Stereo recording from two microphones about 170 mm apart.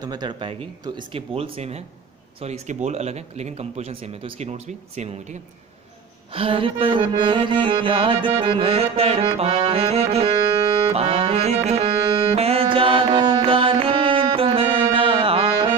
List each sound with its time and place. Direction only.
0.0 s music: 25° right (ahead or behind)